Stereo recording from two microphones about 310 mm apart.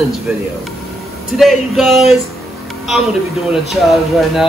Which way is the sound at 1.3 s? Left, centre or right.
Centre.